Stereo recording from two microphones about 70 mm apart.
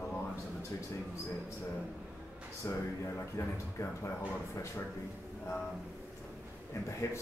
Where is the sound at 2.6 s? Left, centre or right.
Left.